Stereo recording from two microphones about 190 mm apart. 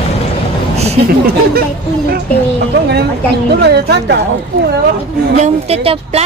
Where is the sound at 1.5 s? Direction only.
55° right (ahead or behind).